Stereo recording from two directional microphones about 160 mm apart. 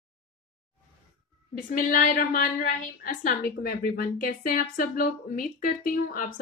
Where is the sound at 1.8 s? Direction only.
55° left (ahead or behind).